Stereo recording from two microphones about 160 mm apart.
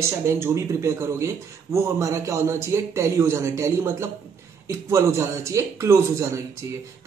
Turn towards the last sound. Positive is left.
turn(degrees=-20)  # may be behind; listen again after turning